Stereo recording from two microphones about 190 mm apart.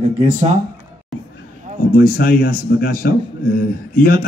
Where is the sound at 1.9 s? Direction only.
50° left (ahead or behind).